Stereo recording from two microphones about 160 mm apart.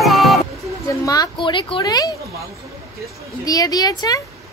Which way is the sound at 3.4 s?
25° left (ahead or behind).